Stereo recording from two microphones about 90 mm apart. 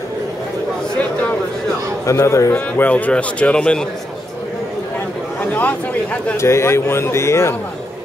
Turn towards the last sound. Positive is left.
turn(degrees=30)  # may be behind; listen again after turning